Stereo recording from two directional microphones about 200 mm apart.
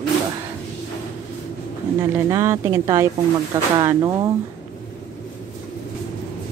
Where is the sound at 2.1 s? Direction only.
15° right (ahead or behind).